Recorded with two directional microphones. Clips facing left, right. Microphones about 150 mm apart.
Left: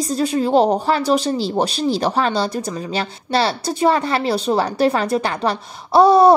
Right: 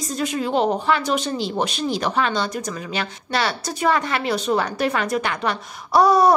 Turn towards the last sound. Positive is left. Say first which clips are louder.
# left 5 dB
turn(degrees=30)  # may be behind; listen again after turning